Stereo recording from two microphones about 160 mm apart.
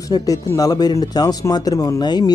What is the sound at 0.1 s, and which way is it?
Speech, 20° left (ahead or behind).